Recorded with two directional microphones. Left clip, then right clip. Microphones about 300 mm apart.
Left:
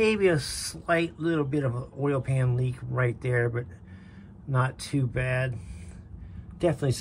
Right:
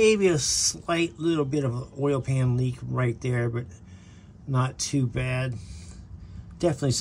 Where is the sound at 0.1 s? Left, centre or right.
Centre.